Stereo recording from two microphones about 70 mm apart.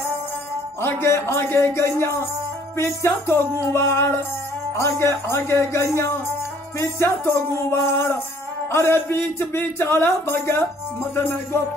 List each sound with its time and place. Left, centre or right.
0.8 s speech: left